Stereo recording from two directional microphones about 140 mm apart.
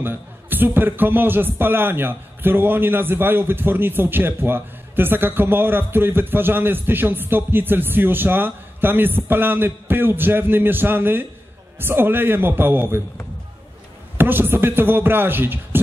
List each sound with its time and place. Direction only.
0.0 s a man's voice: 15° right (ahead or behind)
14.1 s a man's voice: 15° right (ahead or behind)